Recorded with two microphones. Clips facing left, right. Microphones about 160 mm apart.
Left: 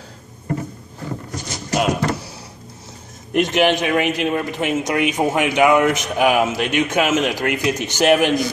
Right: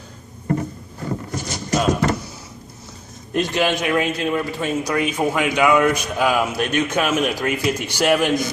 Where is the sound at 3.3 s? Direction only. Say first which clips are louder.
Left 3 dB; 20° left (ahead or behind).